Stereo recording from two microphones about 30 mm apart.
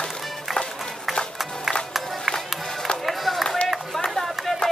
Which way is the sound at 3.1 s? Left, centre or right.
Centre.